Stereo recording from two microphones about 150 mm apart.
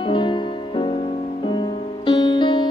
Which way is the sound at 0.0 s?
35° left (ahead or behind).